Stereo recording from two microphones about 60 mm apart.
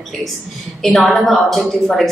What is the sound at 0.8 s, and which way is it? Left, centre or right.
Speech, centre.